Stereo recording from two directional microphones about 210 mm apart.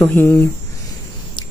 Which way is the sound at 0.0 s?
10° left (ahead or behind).